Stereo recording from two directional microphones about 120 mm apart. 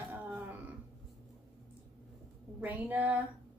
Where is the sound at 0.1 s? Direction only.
15° right (ahead or behind).